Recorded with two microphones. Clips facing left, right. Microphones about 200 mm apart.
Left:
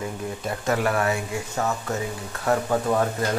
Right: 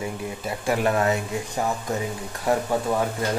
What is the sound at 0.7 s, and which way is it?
Speech, 20° right (ahead or behind).